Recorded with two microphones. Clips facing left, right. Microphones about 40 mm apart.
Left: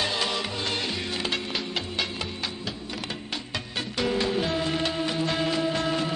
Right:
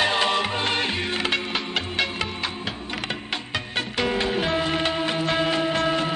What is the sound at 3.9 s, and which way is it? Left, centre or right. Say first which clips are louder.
Music: right 1 dB; right.